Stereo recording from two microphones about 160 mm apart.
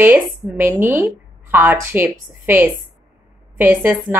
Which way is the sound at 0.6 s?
15° right (ahead or behind).